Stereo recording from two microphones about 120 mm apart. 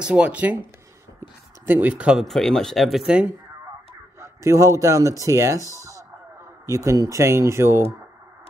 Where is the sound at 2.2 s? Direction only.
5° left (ahead or behind).